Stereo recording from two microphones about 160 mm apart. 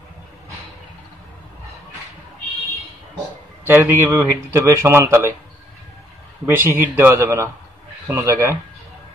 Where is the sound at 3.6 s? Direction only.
15° right (ahead or behind).